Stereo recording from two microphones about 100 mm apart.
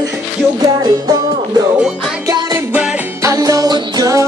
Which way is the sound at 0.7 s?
45° right (ahead or behind).